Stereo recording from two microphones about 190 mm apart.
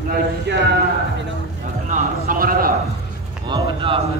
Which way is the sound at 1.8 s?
50° right (ahead or behind).